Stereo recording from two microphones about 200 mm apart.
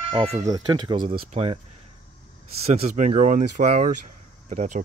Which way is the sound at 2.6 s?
35° right (ahead or behind).